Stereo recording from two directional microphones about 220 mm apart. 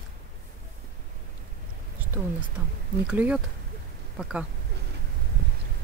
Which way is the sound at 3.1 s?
5° right (ahead or behind).